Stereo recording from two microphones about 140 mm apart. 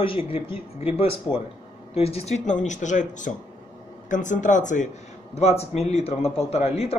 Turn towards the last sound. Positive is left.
turn(degrees=50)  # may be behind; listen again after turning